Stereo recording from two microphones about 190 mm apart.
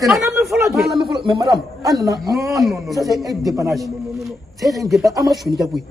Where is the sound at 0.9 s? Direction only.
25° right (ahead or behind).